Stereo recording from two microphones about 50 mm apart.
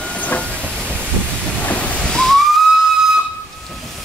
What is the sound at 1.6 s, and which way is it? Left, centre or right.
Ocean, left.